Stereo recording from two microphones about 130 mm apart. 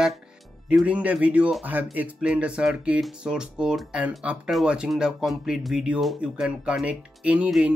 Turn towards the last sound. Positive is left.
turn(degrees=-10)  # may be behind; listen again after turning